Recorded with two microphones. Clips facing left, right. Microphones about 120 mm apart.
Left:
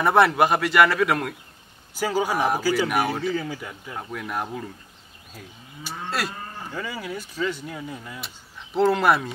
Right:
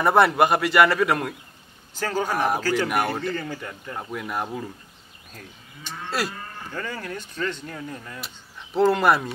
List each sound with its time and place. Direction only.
0.0 s speech: centre (ahead or behind)
2.0 s speech: 10° left (ahead or behind)
5.3 s moo: 5° left (ahead or behind)